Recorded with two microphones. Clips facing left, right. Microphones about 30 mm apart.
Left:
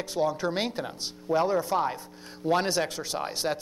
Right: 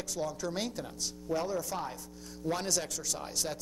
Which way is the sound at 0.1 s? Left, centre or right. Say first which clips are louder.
Left 8 dB; left.